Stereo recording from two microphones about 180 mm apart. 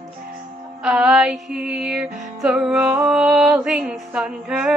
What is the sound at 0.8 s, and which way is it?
Music, 5° right (ahead or behind).